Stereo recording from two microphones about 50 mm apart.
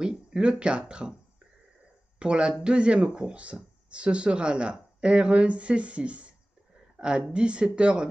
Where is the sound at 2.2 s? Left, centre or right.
Centre.